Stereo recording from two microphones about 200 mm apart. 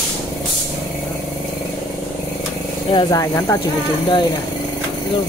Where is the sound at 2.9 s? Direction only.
20° left (ahead or behind).